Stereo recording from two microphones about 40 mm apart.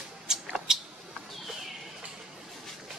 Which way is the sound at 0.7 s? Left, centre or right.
Centre.